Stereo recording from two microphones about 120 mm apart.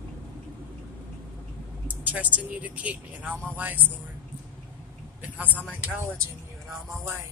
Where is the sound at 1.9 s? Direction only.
15° right (ahead or behind).